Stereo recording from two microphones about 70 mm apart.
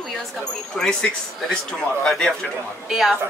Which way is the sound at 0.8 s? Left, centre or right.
Centre.